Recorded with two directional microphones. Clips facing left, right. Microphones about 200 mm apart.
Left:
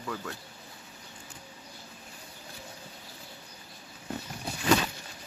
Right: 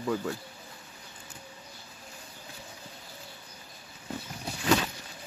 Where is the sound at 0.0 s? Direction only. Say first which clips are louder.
Right 7 dB; 25° right (ahead or behind).